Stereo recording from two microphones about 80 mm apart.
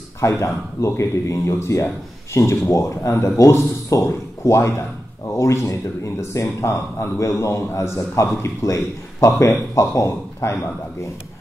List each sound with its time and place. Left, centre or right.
0.2 s speech: left